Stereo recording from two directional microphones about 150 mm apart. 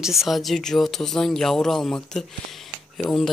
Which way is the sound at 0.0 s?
Centre (ahead or behind).